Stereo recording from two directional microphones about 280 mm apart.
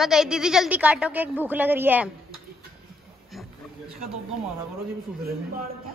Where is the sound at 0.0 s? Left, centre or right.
Centre.